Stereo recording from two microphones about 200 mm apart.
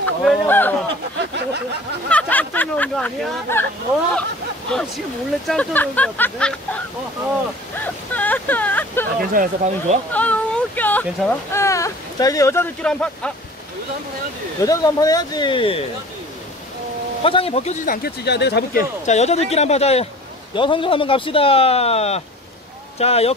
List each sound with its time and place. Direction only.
0.0 s speech: 5° left (ahead or behind)
2.0 s speech: 5° left (ahead or behind)
4.6 s speech: centre (ahead or behind)
7.8 s speech: 10° left (ahead or behind)
9.2 s speech: 45° right (ahead or behind)
10.1 s speech: 5° left (ahead or behind)
14.6 s speech: 15° left (ahead or behind)
17.2 s speech: 30° left (ahead or behind)
17.8 s speech: 50° left (ahead or behind)
19.0 s speech: 35° left (ahead or behind)